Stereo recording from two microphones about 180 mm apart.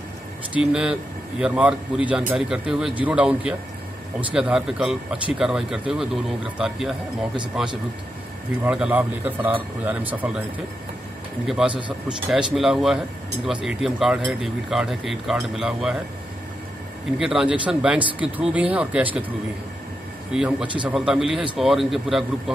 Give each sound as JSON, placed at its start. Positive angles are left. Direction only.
{"t": 0.5, "sound": "speech", "side_deg": -5}
{"t": 11.4, "sound": "speech", "side_deg": -5}
{"t": 17.2, "sound": "speech", "side_deg": -5}
{"t": 20.3, "sound": "speech", "side_deg": -5}